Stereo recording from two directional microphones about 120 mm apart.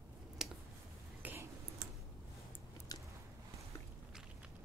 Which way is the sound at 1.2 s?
15° right (ahead or behind).